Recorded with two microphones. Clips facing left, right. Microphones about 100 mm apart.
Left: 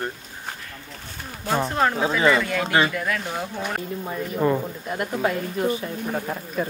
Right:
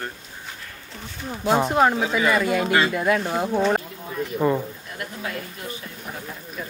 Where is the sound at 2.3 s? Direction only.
20° right (ahead or behind).